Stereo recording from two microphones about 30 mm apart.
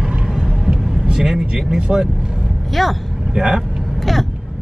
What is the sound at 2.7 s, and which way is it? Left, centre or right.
Speech, centre.